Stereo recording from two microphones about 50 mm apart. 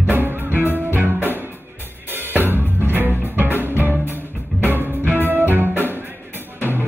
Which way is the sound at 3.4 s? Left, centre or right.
Left.